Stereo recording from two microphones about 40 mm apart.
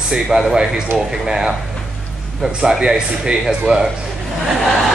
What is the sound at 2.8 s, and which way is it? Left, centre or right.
Speech, centre.